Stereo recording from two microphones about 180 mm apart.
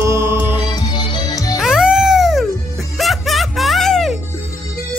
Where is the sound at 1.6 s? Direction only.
5° right (ahead or behind).